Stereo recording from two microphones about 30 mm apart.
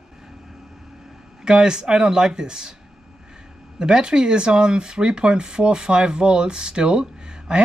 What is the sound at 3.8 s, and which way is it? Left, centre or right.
Speech, right.